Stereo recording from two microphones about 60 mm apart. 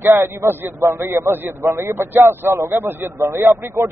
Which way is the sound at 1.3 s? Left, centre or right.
Right.